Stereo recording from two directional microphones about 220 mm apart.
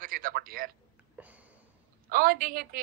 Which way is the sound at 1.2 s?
5° right (ahead or behind).